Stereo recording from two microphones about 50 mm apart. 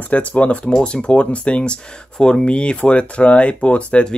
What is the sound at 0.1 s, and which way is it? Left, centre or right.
Speech, left.